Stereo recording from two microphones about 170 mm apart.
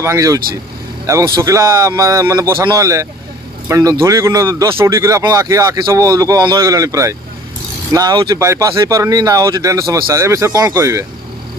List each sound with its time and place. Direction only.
0.0 s speech: 20° right (ahead or behind)